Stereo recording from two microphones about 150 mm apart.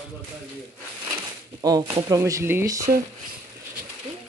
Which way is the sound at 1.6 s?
25° right (ahead or behind).